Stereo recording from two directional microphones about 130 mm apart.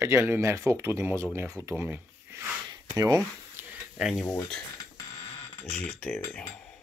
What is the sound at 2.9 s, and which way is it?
Speech, 30° right (ahead or behind).